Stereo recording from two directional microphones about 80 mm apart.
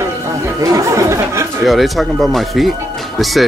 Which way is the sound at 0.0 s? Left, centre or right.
Right.